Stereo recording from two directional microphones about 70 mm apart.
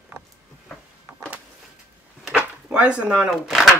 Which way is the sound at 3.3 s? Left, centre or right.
Centre.